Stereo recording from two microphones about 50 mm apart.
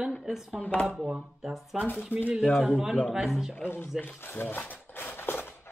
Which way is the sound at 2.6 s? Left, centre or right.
Centre.